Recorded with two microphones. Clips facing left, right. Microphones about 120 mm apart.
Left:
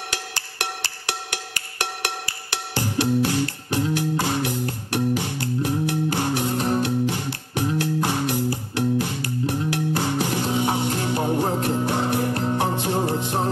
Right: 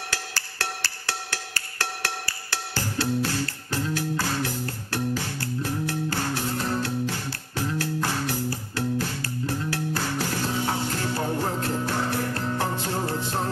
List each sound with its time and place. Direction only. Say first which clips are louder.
0.1 s music: left 2 dB; 20° left (ahead or behind)